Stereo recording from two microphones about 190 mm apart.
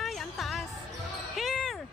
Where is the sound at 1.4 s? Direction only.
Centre (ahead or behind).